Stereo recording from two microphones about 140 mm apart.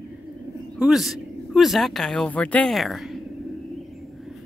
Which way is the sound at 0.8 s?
Centre (ahead or behind).